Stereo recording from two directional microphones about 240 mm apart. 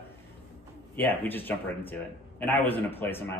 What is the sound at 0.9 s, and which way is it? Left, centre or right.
Speech, centre.